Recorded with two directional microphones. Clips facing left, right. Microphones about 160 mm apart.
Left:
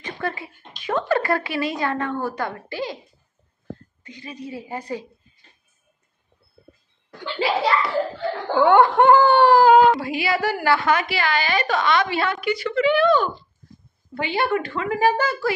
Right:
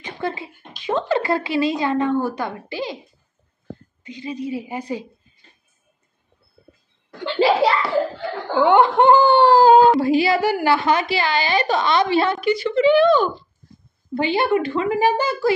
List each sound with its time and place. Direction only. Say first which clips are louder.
0.0 s a sound: right 2 dB; 20° right (ahead or behind)
0.8 s a woman's voice: right 1 dB; 20° right (ahead or behind)
4.0 s a woman's voice: right 10 dB; 20° right (ahead or behind)
7.2 s a child's voice: right 5 dB; 35° right (ahead or behind)
8.5 s a woman's voice: even; 20° right (ahead or behind)
10.4 s a woman's voice: right 2 dB; 20° right (ahead or behind)